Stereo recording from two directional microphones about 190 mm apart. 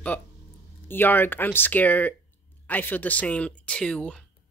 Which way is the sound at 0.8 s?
10° left (ahead or behind).